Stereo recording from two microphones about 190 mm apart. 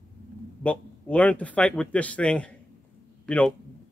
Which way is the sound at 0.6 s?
5° left (ahead or behind).